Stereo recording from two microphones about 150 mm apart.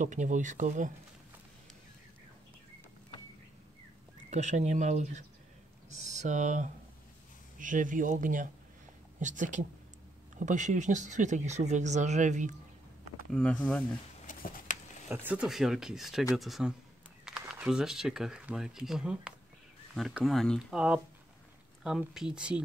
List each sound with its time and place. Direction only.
0.0 s speech: 55° right (ahead or behind)
4.3 s speech: 50° right (ahead or behind)
13.3 s speech: 5° left (ahead or behind)
14.2 s a sound: 55° left (ahead or behind)
15.2 s speech: 5° right (ahead or behind)